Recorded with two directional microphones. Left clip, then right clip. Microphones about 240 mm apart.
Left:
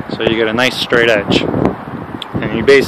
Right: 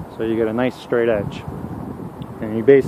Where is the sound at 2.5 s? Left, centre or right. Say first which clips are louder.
Left 3 dB; centre.